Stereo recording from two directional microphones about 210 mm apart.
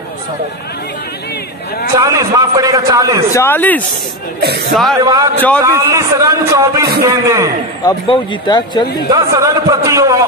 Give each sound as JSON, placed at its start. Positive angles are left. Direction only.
{"t": 2.0, "sound": "a man's voice", "side_deg": -15}
{"t": 3.3, "sound": "speech", "side_deg": 10}
{"t": 4.4, "sound": "speech", "side_deg": -50}
{"t": 5.0, "sound": "a man's voice", "side_deg": -20}
{"t": 7.8, "sound": "speech", "side_deg": 20}
{"t": 9.1, "sound": "a man's voice", "side_deg": -15}